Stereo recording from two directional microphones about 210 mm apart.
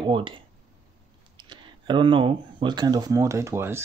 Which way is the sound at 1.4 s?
20° right (ahead or behind).